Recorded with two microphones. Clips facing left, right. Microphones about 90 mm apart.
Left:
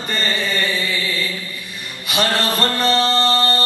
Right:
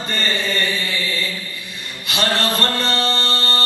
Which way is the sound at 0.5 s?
15° left (ahead or behind).